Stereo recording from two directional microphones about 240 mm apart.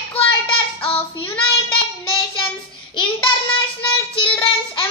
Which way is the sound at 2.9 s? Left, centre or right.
Left.